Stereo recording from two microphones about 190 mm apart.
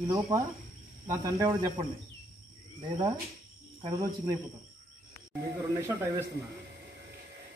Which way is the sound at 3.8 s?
20° right (ahead or behind).